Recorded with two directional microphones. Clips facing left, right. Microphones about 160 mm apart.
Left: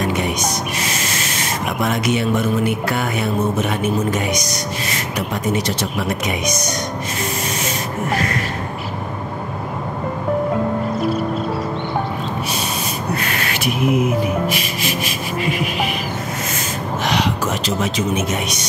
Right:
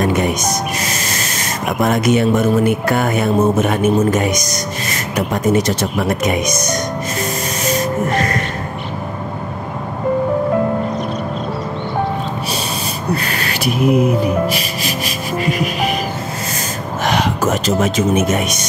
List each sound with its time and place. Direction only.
0.1 s speech: 45° right (ahead or behind)
13.1 s music: 35° right (ahead or behind)
17.0 s speech: 50° right (ahead or behind)